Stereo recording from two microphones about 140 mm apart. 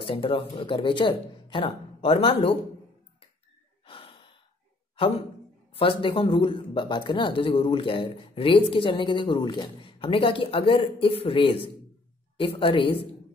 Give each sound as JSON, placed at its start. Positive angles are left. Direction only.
{"t": 0.0, "sound": "speech", "side_deg": 40}
{"t": 3.8, "sound": "gasp", "side_deg": 40}
{"t": 5.8, "sound": "speech", "side_deg": 40}